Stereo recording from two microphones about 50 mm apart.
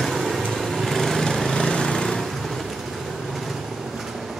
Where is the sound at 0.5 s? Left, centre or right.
Centre.